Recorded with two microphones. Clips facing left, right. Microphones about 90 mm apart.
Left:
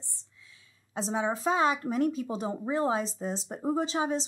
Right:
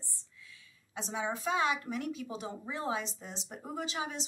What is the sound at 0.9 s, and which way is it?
A woman's voice, 35° left (ahead or behind).